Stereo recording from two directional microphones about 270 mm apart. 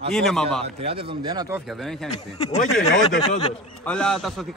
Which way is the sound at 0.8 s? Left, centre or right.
Centre.